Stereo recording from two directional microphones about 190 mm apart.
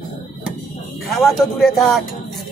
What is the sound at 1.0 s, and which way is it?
Speech, centre (ahead or behind).